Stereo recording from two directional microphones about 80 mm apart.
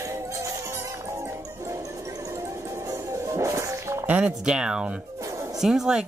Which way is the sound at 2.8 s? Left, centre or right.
Right.